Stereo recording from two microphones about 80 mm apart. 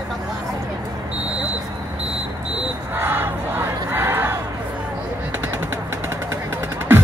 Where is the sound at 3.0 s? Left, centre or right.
Right.